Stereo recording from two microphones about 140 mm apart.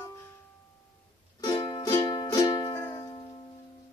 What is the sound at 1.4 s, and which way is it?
Music, 30° left (ahead or behind).